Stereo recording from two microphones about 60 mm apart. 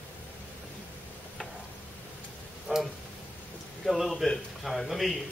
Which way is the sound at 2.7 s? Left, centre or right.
Centre.